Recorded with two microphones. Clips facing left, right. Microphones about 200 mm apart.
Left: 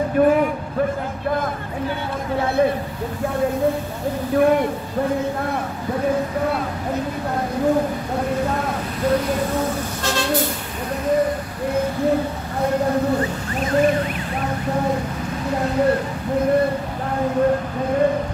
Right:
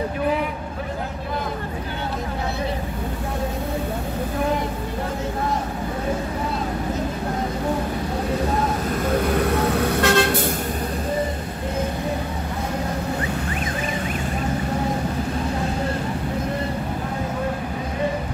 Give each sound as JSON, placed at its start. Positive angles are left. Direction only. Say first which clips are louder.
{"t": 0.2, "sound": "a sound", "louder": "left 9 dB", "side_deg": 50}
{"t": 4.4, "sound": "speech", "louder": "left 8 dB", "side_deg": 60}
{"t": 9.4, "sound": "vehicle", "louder": "right 2 dB", "side_deg": -65}